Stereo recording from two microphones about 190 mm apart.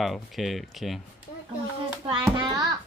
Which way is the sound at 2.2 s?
20° right (ahead or behind).